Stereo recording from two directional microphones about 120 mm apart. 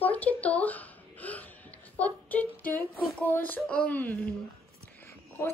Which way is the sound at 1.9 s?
15° left (ahead or behind).